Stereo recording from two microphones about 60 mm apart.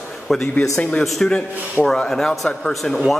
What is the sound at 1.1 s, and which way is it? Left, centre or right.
A man's voice, centre.